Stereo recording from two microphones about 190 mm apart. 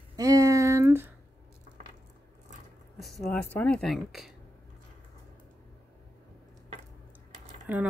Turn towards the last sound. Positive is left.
turn(degrees=-10)  # may be behind; listen again after turning